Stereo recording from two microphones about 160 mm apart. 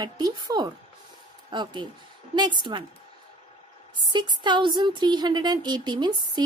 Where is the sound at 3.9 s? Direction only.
30° right (ahead or behind).